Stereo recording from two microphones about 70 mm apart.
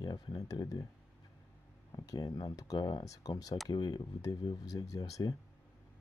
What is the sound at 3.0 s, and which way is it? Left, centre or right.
Speech, left.